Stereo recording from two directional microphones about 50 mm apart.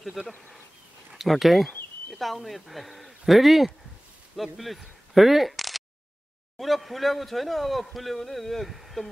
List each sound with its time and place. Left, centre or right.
0.2 s speech: right
1.1 s speech: centre